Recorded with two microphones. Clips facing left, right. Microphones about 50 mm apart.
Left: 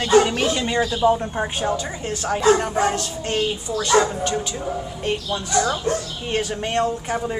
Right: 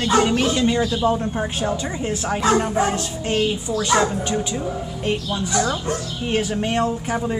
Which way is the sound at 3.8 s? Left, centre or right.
Centre.